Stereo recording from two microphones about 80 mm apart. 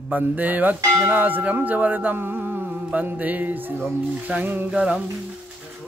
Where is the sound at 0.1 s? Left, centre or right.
Right.